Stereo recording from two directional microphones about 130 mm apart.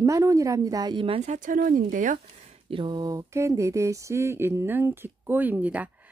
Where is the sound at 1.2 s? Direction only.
70° right (ahead or behind); by 2.1 s 90° right.